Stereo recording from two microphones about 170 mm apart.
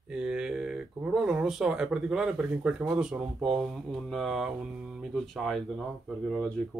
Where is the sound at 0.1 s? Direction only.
5° right (ahead or behind).